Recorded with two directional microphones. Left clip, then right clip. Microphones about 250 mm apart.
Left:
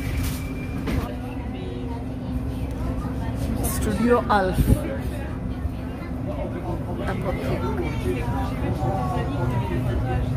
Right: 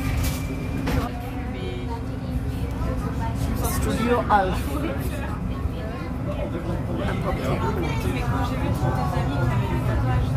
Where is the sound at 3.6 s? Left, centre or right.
Centre.